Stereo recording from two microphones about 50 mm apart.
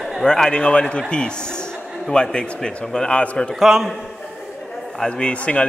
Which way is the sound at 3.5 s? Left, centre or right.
Centre.